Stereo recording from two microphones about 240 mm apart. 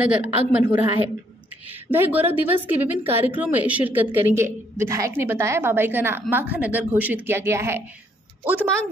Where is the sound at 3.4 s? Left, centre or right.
Centre.